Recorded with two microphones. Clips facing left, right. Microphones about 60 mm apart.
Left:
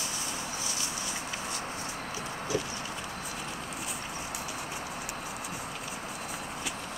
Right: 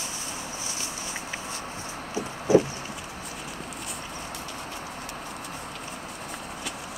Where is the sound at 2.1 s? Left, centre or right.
Right.